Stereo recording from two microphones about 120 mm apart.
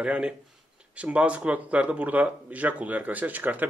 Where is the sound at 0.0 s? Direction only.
10° right (ahead or behind).